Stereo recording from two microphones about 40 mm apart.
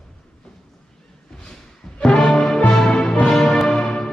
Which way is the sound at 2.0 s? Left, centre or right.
Left.